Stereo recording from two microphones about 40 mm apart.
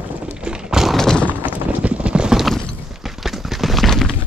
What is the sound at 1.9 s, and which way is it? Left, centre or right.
Clip-clop, right.